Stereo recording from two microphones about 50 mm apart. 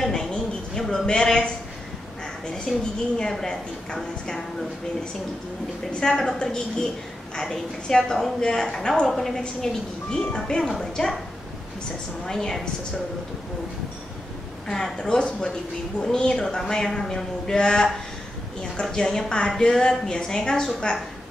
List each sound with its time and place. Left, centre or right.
0.0 s a sound: centre
2.5 s a woman's voice: centre
5.9 s a woman's voice: centre
12.3 s a woman's voice: centre
14.7 s a woman's voice: centre